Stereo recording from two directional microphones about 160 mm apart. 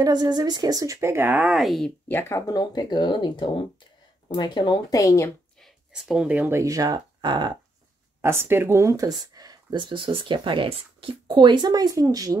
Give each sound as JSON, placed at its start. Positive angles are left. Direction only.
{"t": 0.0, "sound": "speech", "side_deg": -25}
{"t": 2.0, "sound": "speech", "side_deg": 15}
{"t": 5.6, "sound": "speech", "side_deg": -5}
{"t": 8.2, "sound": "speech", "side_deg": -15}